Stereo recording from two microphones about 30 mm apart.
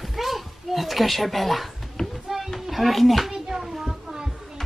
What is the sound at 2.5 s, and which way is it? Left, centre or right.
Speech, centre.